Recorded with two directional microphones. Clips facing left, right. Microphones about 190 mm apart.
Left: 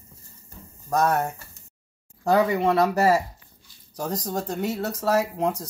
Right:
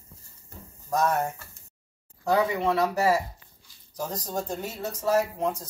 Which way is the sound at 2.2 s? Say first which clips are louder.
Left 4 dB; 60° left (ahead or behind).